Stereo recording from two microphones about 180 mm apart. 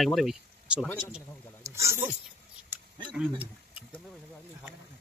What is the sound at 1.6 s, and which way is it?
Speech, 15° right (ahead or behind).